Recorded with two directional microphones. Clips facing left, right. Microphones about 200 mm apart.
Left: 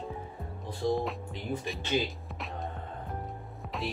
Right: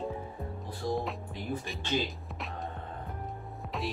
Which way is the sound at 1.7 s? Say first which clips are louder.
Left 3 dB; centre (ahead or behind).